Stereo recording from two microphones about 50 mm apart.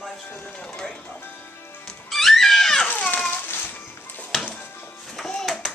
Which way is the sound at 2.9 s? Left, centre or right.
Left.